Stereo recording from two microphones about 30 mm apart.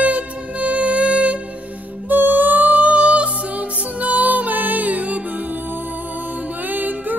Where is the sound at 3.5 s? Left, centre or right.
Right.